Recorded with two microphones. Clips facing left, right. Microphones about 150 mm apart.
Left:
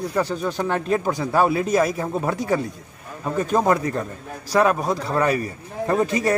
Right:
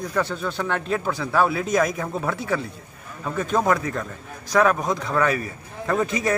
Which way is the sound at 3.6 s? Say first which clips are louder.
Left 1 dB; 15° left (ahead or behind).